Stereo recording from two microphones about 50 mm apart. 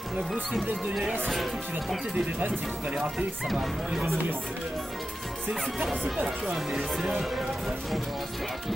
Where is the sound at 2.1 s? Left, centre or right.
Right.